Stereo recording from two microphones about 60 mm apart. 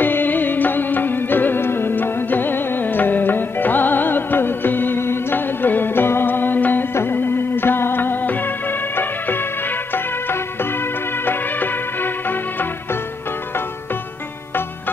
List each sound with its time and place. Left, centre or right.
0.0 s music: left
11.2 s music: left